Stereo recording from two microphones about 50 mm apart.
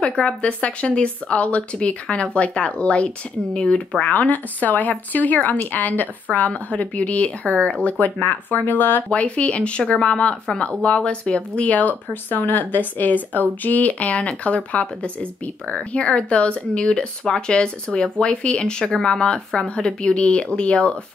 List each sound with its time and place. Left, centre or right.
0.0 s speech: left
4.0 s speech: left
8.0 s speech: left
9.1 s speech: left